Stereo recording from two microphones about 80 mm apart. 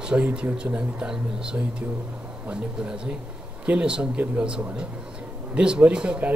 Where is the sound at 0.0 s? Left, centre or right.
Centre.